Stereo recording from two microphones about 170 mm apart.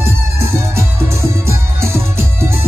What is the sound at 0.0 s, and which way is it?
Music, 15° right (ahead or behind).